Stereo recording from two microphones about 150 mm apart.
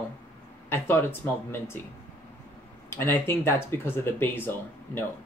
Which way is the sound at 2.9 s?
15° left (ahead or behind).